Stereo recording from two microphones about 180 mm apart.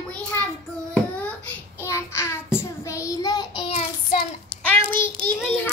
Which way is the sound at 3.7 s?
45° left (ahead or behind).